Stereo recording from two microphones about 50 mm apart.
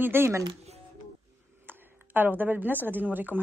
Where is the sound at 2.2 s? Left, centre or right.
Right.